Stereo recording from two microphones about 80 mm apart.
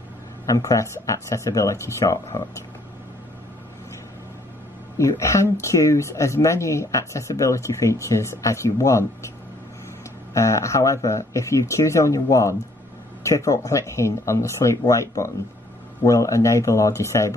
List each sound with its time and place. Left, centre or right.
0.5 s speech: left
4.9 s speech: left
10.3 s speech: left